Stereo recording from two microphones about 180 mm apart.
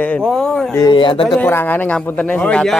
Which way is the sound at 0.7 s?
20° left (ahead or behind).